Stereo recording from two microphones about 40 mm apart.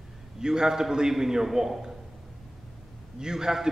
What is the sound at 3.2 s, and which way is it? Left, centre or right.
Speech, centre.